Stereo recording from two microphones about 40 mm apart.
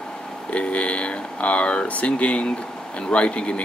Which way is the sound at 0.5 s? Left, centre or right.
Left.